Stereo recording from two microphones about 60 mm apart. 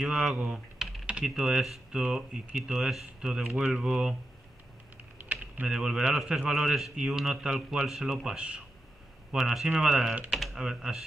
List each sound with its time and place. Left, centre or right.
0.0 s speech: centre
1.0 s typing: centre
1.3 s speech: centre
5.3 s typing: right
5.7 s speech: centre